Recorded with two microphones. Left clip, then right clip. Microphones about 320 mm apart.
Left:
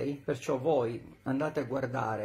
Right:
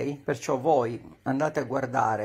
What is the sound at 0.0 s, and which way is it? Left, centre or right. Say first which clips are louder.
Speech: right 4 dB; right.